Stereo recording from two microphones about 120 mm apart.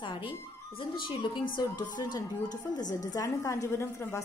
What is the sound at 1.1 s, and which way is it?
A woman's voice, 40° left (ahead or behind).